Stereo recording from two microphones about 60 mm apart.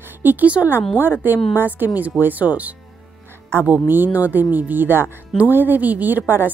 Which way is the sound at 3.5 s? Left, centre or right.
Right.